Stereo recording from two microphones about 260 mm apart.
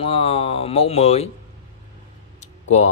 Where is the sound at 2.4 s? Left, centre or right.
Left.